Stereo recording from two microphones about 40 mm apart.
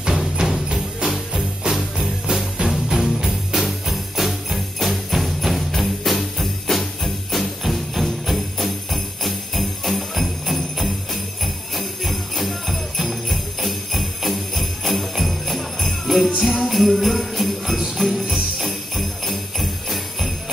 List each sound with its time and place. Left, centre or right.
0.0 s music: centre
1.0 s music: centre
11.4 s jingle bell: centre
18.0 s music: centre
18.3 s jingle bell: centre